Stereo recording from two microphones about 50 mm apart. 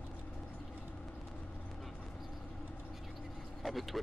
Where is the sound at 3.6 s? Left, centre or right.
Centre.